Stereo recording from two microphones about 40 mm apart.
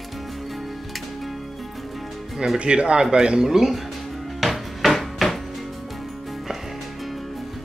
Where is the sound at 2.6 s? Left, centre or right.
Right.